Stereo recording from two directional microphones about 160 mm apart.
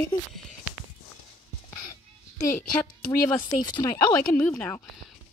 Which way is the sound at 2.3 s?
15° left (ahead or behind).